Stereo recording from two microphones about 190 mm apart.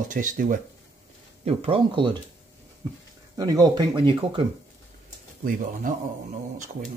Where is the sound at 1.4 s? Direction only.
30° right (ahead or behind).